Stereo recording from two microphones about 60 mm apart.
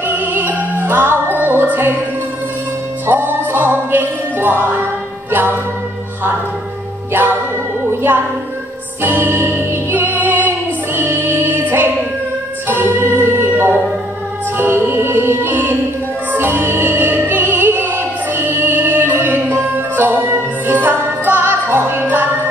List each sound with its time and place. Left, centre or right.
0.0 s music: right
3.1 s music: right
7.1 s music: right
9.0 s music: right
15.0 s music: right